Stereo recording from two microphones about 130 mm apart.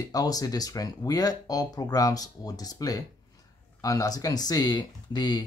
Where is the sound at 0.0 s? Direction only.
30° left (ahead or behind).